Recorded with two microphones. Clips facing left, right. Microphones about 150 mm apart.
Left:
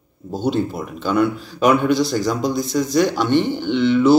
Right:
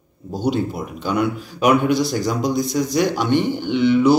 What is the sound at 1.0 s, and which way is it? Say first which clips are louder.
A man's voice: left 3 dB; 15° right (ahead or behind).